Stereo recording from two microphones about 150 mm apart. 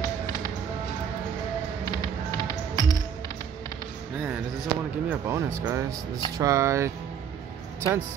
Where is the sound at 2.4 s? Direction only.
20° left (ahead or behind).